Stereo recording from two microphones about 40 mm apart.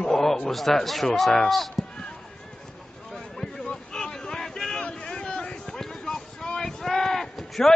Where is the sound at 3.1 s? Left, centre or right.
Centre.